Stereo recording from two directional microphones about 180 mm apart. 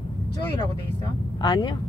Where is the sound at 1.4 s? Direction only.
25° left (ahead or behind).